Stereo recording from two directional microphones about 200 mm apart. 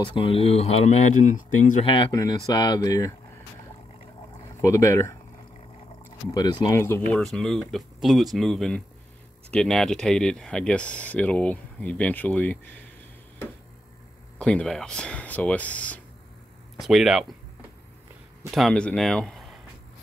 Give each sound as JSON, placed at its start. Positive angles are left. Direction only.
{"t": 0.0, "sound": "speech", "side_deg": 25}
{"t": 1.9, "sound": "speech", "side_deg": 25}
{"t": 4.6, "sound": "speech", "side_deg": 15}
{"t": 6.3, "sound": "speech", "side_deg": 20}
{"t": 14.4, "sound": "speech", "side_deg": 5}
{"t": 18.5, "sound": "speech", "side_deg": 0}